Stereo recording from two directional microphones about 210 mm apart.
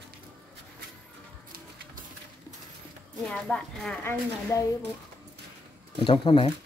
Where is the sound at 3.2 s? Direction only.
5° left (ahead or behind).